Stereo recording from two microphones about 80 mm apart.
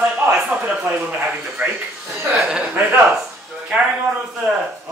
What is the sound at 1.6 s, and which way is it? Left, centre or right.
A man's voice, centre.